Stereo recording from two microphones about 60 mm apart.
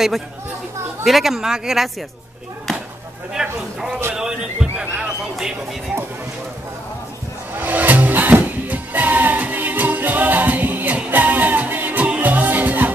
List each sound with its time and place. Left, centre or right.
1.0 s speech: centre
3.4 s speech: centre
7.5 s music: right